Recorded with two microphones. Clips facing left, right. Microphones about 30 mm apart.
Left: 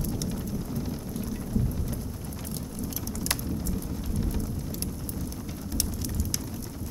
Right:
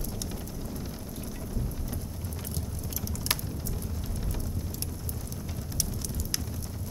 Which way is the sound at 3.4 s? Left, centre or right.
Centre.